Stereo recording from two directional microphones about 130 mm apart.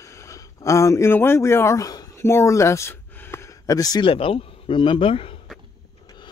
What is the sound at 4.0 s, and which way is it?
Speech, 45° left (ahead or behind).